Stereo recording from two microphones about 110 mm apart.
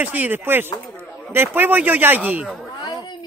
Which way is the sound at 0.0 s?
15° right (ahead or behind).